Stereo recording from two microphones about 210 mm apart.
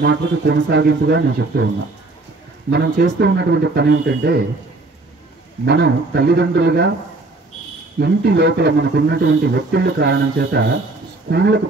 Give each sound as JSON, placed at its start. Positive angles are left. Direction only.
{"t": 0.0, "sound": "speech", "side_deg": -50}
{"t": 2.7, "sound": "speech", "side_deg": -55}
{"t": 5.7, "sound": "speech", "side_deg": -50}
{"t": 8.0, "sound": "speech", "side_deg": -50}